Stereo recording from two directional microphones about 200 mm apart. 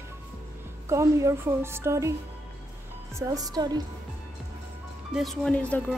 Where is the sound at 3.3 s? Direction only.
20° right (ahead or behind).